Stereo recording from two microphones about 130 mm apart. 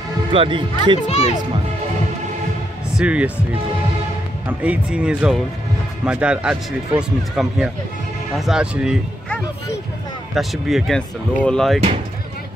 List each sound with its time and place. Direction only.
0.3 s speech: 40° right (ahead or behind)
1.0 s speech: 55° left (ahead or behind)
3.0 s speech: 10° right (ahead or behind)
4.5 s speech: 10° right (ahead or behind)
10.3 s speech: centre (ahead or behind)